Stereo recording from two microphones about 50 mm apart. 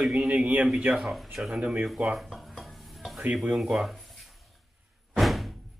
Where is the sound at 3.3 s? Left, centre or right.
Centre.